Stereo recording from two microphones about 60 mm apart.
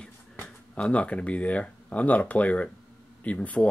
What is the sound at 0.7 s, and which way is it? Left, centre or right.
Speech, centre.